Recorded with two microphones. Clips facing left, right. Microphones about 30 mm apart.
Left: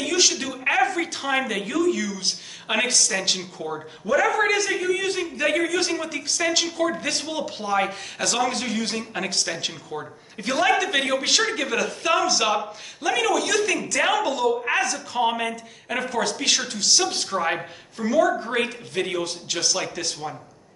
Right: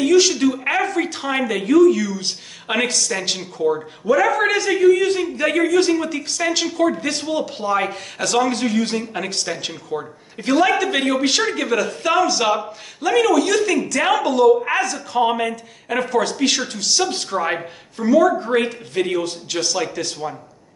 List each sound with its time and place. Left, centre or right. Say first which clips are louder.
0.0 s speech: right 8 dB; centre